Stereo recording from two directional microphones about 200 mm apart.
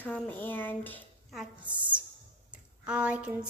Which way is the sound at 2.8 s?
5° right (ahead or behind).